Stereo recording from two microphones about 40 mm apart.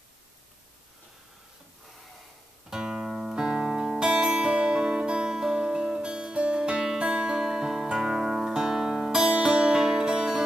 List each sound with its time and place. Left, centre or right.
2.7 s music: centre
7.3 s music: centre